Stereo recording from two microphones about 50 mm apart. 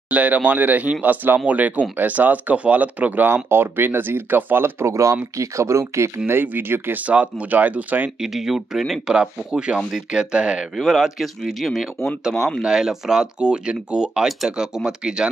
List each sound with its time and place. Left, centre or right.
0.1 s speech: right
3.4 s speech: right
4.8 s speech: right
6.2 s speech: right
7.1 s speech: right
8.2 s speech: centre
10.8 s speech: centre
12.6 s speech: centre